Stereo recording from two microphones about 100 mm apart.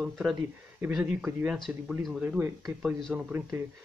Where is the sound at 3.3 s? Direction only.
20° right (ahead or behind).